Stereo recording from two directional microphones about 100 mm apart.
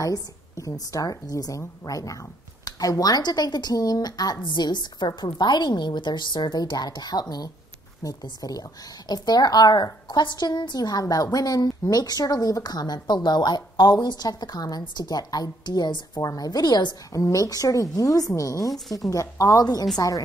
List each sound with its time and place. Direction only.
0.0 s speech: 35° left (ahead or behind)